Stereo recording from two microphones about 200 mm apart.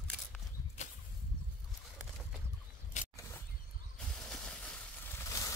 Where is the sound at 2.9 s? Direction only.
35° left (ahead or behind).